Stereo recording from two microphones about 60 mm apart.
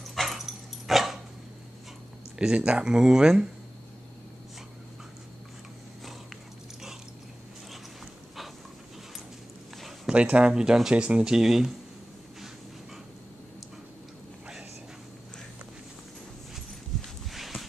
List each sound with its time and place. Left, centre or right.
0.0 s dog: centre
2.3 s speech: centre
10.0 s speech: centre
11.2 s speech: centre
17.0 s a sound: centre